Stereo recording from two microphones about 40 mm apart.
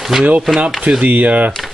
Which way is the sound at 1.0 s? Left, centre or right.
Right.